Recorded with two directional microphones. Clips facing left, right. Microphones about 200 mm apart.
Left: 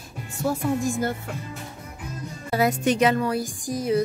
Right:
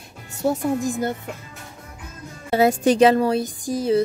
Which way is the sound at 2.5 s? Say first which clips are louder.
Right 5 dB; 30° right (ahead or behind).